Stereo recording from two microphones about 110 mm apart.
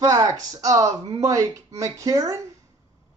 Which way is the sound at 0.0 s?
30° right (ahead or behind).